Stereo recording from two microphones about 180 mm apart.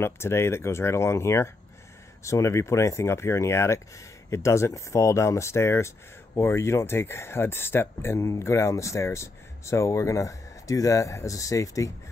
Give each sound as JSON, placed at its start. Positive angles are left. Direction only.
{"t": 0.0, "sound": "speech", "side_deg": 15}